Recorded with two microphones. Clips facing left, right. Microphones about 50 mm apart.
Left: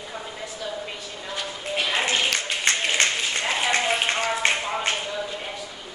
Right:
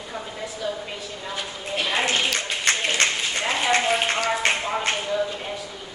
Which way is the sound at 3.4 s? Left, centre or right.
Centre.